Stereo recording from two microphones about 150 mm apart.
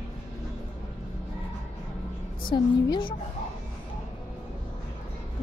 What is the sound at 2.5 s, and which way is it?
Speech, 35° left (ahead or behind).